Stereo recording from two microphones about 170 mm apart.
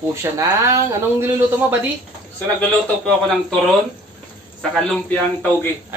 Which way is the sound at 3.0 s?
5° left (ahead or behind).